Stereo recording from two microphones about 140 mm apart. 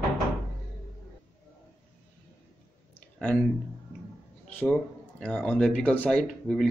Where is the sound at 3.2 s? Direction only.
10° left (ahead or behind).